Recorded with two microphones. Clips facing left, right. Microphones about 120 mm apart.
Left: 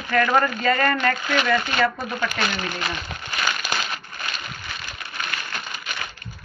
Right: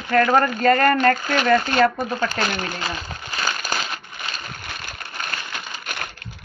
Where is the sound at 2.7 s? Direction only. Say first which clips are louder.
Even; 30° right (ahead or behind).